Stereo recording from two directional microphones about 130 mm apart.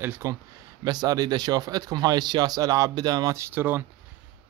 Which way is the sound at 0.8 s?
30° right (ahead or behind).